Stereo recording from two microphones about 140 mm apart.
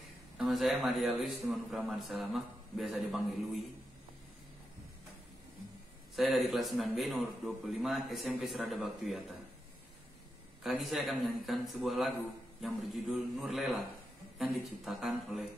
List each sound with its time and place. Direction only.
0.4 s a man's voice: centre (ahead or behind)
6.1 s a man's voice: centre (ahead or behind)
10.6 s a man's voice: centre (ahead or behind)